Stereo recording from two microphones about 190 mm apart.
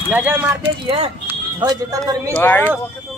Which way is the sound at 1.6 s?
20° right (ahead or behind).